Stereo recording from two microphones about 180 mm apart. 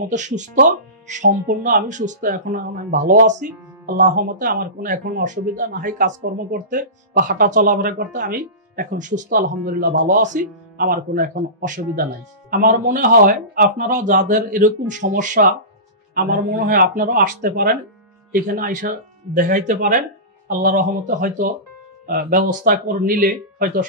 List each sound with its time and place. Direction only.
0.1 s speech: 40° right (ahead or behind)